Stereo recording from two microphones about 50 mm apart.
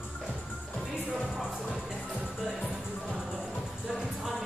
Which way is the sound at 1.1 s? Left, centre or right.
Centre.